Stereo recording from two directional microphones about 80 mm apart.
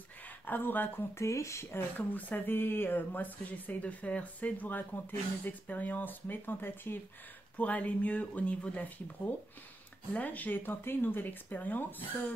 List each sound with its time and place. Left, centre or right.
0.5 s speech: left
1.1 s speech: left